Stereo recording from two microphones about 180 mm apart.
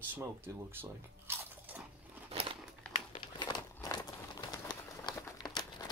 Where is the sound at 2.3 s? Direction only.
30° right (ahead or behind).